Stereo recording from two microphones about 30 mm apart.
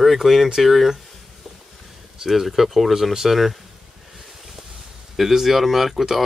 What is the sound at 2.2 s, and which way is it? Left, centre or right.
Speech, centre.